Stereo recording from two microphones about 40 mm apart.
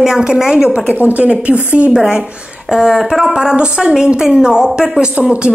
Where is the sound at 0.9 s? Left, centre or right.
Right.